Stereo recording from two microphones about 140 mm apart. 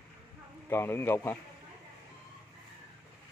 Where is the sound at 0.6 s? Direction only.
15° left (ahead or behind).